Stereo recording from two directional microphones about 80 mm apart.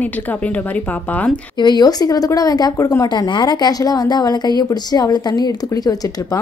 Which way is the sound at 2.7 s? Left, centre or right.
Left.